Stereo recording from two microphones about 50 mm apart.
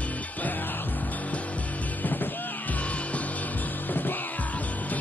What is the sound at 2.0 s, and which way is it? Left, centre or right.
Music, left.